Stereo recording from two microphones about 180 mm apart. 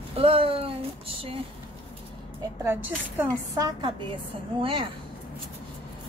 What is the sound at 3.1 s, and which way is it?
Speech, 20° right (ahead or behind).